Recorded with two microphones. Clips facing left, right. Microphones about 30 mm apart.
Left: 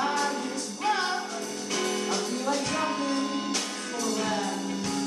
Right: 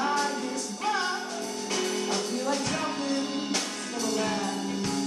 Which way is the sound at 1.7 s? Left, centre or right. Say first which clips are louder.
Left 1 dB; centre.